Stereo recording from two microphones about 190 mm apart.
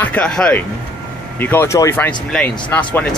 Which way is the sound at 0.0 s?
5° left (ahead or behind).